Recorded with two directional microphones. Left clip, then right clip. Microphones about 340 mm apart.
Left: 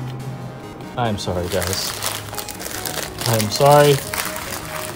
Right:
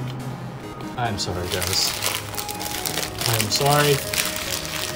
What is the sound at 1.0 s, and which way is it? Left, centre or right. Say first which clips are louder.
Speech: left 4 dB; centre.